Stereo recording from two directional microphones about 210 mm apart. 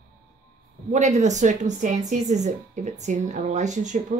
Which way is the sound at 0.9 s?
35° right (ahead or behind).